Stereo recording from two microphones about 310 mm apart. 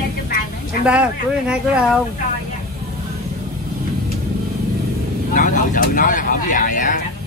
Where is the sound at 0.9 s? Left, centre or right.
Centre.